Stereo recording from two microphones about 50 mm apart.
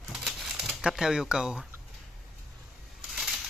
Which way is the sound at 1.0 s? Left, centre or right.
Centre.